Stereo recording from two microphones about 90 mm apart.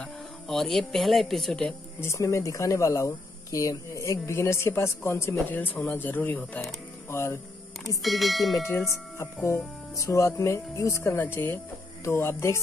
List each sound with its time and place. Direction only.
0.0 s speech: 5° left (ahead or behind)
2.0 s speech: 30° left (ahead or behind)
7.1 s speech: 30° left (ahead or behind)
8.0 s speech: centre (ahead or behind)
8.6 s speech: 30° left (ahead or behind)
11.1 s speech: 25° left (ahead or behind)